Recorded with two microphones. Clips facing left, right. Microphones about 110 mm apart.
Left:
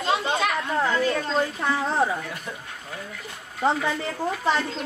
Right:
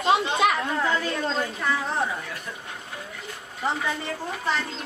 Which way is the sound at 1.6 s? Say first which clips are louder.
Left 3 dB; 30° left (ahead or behind).